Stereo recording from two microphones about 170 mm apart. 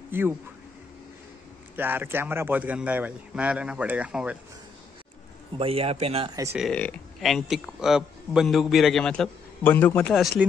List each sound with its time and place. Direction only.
0.1 s speech: 15° right (ahead or behind)
1.8 s speech: 10° right (ahead or behind)
5.6 s a man's voice: 35° right (ahead or behind)
6.7 s a man's voice: 5° left (ahead or behind)